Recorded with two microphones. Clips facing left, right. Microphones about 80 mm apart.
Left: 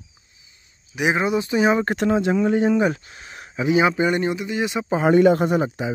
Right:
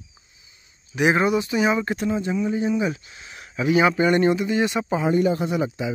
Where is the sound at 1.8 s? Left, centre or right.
Left.